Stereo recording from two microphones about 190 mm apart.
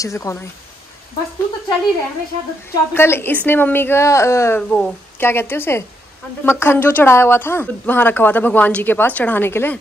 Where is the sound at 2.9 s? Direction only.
10° left (ahead or behind).